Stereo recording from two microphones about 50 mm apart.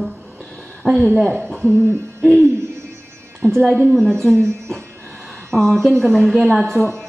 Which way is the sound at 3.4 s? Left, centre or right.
Left.